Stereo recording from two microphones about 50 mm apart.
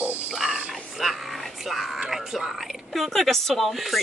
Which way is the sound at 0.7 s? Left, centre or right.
Centre.